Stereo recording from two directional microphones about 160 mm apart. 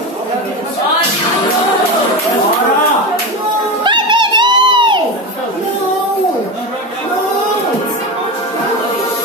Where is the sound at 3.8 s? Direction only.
30° right (ahead or behind).